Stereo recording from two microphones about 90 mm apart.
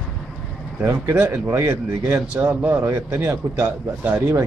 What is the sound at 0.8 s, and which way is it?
A man's voice, 30° right (ahead or behind).